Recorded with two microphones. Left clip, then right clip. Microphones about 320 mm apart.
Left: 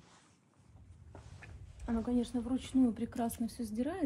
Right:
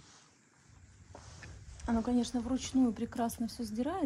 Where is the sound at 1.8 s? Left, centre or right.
Right.